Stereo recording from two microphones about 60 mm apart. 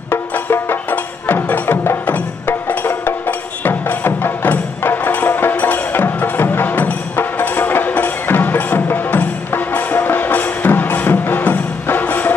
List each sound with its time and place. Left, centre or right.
0.1 s music: left